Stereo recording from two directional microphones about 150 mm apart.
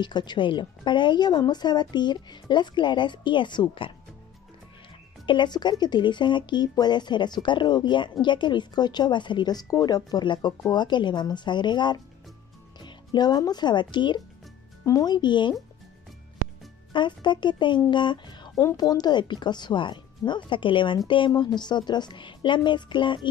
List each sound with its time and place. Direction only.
0.0 s a woman's voice: 30° left (ahead or behind)
5.2 s a woman's voice: 30° left (ahead or behind)
16.9 s a woman's voice: 30° left (ahead or behind)